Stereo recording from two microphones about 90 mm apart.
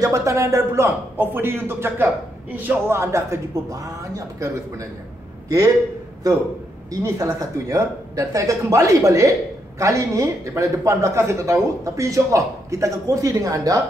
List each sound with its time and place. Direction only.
0.0 s a man's voice: 35° right (ahead or behind)
6.9 s speech: 35° right (ahead or behind)